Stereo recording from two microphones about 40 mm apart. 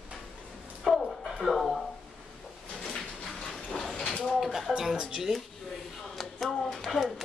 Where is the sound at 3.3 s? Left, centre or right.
Centre.